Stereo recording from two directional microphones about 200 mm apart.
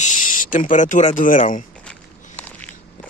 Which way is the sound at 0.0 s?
40° left (ahead or behind).